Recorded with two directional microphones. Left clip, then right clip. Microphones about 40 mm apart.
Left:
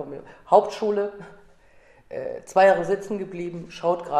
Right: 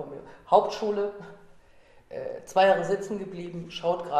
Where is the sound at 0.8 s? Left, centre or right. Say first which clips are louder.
Left 4 dB; centre.